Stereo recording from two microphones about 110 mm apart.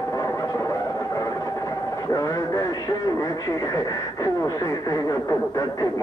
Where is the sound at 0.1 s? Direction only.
30° left (ahead or behind).